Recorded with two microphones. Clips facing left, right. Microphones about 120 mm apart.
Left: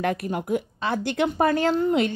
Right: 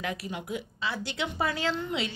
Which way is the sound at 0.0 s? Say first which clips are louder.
Left 9 dB; 50° left (ahead or behind).